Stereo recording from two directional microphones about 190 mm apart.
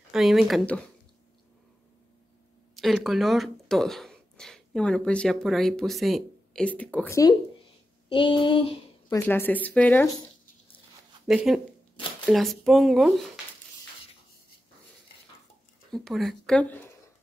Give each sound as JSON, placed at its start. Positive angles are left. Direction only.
{"t": 0.1, "sound": "speech", "side_deg": 0}
{"t": 2.7, "sound": "speech", "side_deg": 0}
{"t": 8.1, "sound": "a sound", "side_deg": 25}
{"t": 9.2, "sound": "speech", "side_deg": 10}
{"t": 11.2, "sound": "speech", "side_deg": 0}
{"t": 15.9, "sound": "speech", "side_deg": 0}